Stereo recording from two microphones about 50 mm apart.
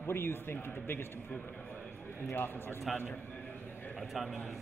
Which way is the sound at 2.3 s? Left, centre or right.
Left.